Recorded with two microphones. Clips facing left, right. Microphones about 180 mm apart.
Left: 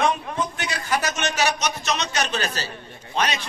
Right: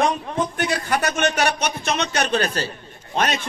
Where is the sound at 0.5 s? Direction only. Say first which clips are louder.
Right 4 dB; 55° right (ahead or behind).